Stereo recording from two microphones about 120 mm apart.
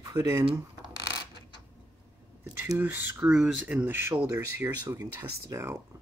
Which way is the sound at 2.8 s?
15° right (ahead or behind).